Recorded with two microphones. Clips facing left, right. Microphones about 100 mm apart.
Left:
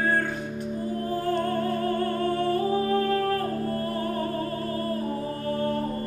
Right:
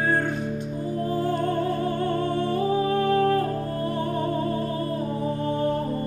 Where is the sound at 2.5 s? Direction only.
20° right (ahead or behind).